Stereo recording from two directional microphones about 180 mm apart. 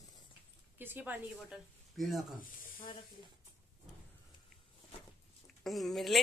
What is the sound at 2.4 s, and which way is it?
Speech, 50° left (ahead or behind).